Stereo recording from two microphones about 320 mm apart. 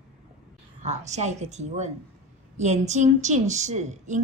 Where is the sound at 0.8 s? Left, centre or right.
Right.